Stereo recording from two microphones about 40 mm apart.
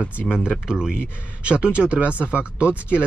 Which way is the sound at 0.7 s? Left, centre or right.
Centre.